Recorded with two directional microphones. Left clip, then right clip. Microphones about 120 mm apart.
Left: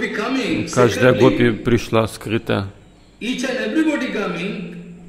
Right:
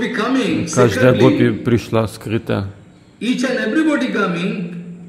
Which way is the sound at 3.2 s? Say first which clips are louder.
Right 3 dB; 50° right (ahead or behind).